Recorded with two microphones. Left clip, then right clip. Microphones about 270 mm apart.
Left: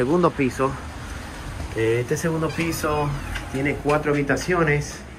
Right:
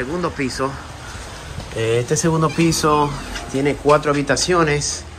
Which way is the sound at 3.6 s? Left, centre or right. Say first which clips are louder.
Right 6 dB; centre.